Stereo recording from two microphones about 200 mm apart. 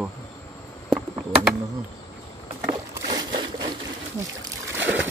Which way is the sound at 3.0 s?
20° right (ahead or behind).